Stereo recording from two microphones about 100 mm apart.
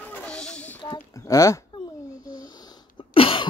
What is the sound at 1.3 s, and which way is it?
Speech, 35° left (ahead or behind).